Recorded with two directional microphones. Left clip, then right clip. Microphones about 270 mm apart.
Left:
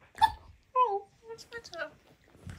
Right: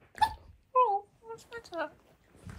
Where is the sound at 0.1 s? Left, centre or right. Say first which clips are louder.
Left 3 dB; centre.